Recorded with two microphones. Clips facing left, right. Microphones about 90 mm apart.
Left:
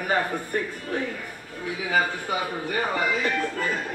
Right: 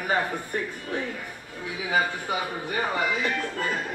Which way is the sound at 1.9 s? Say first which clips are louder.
Left 1 dB; 40° left (ahead or behind).